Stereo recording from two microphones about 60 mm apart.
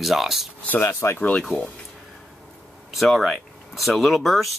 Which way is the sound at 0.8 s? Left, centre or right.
Left.